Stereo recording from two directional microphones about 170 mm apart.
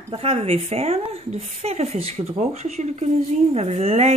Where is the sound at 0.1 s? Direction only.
35° right (ahead or behind).